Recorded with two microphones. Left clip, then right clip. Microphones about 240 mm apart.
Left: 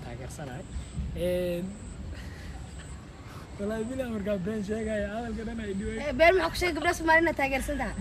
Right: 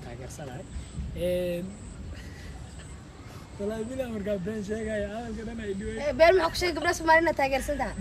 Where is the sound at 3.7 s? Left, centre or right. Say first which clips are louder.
Even; centre.